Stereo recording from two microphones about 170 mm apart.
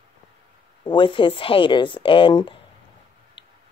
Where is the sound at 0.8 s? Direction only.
30° left (ahead or behind).